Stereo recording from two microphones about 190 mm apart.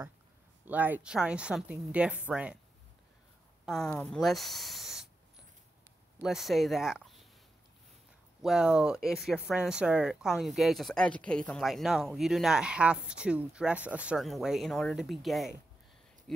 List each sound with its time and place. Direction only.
0.7 s a woman's voice: 10° right (ahead or behind)
3.6 s speech: 5° left (ahead or behind)
6.2 s speech: centre (ahead or behind)
8.4 s speech: 5° right (ahead or behind)